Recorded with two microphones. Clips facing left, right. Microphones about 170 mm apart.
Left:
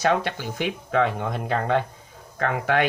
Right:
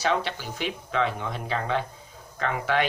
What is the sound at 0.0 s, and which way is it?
Speech, 50° left (ahead or behind).